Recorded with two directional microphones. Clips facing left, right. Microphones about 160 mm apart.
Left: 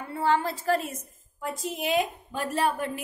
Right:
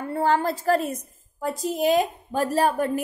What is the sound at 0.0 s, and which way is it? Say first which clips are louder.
A woman's voice: right 3 dB; 45° right (ahead or behind).